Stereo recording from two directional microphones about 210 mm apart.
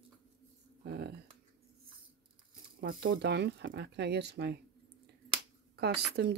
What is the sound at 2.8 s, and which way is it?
Speech, 45° right (ahead or behind).